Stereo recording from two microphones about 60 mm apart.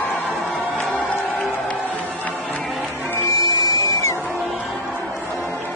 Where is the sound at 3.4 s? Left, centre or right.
Left.